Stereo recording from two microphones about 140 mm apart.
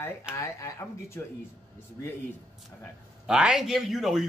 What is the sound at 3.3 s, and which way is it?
Speech, 5° right (ahead or behind).